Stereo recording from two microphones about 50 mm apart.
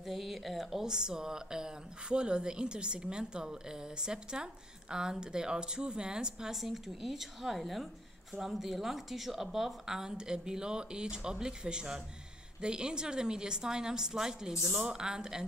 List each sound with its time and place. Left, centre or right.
0.0 s speech: centre
6.5 s speech: centre